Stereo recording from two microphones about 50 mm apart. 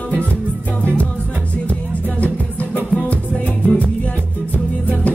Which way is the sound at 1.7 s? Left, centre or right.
Left.